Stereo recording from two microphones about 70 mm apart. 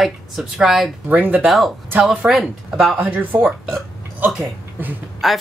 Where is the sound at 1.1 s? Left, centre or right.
Right.